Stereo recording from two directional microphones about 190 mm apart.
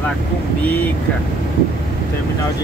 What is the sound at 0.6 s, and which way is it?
Speech, 10° left (ahead or behind).